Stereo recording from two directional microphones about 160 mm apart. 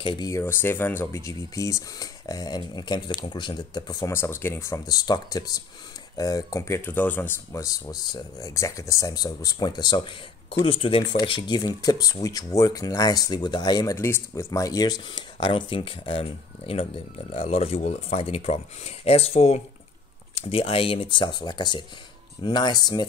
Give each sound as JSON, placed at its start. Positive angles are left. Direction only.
{"t": 0.0, "sound": "speech", "side_deg": 20}